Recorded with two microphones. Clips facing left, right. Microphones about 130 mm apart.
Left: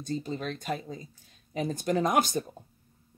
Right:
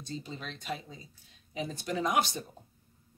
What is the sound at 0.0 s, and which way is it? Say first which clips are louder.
Speech: left 8 dB; 45° left (ahead or behind).